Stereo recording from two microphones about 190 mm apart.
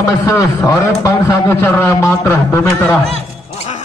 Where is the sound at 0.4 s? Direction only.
15° left (ahead or behind).